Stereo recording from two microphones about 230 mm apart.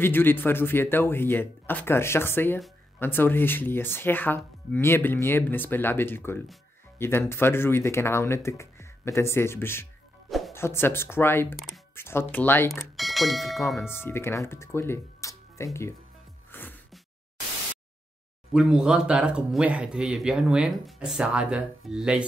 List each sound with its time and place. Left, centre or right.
0.0 s speech: centre
16.5 s a sound: centre
18.5 s speech: centre